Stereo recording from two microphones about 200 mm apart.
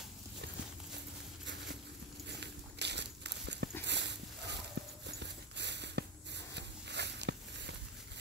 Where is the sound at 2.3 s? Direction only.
60° right (ahead or behind).